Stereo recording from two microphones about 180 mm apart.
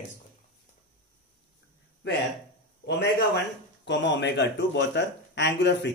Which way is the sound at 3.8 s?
90° left.